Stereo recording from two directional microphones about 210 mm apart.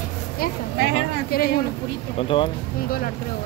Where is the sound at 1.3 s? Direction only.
45° left (ahead or behind).